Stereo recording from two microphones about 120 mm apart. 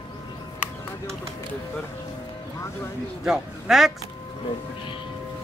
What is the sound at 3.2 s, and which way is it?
Speech, 5° right (ahead or behind).